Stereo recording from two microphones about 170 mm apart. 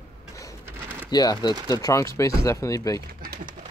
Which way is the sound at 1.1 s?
25° left (ahead or behind).